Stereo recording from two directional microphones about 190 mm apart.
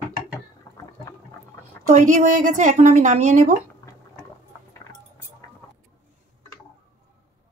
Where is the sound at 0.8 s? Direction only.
15° left (ahead or behind).